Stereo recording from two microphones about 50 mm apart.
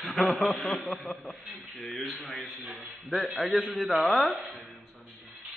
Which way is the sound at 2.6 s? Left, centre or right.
Right.